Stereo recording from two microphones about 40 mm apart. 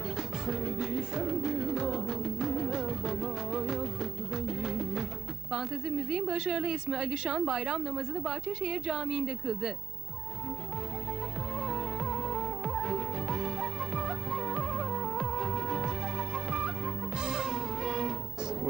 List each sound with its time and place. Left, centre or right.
0.5 s music: centre
5.5 s speech: centre
11.6 s music: centre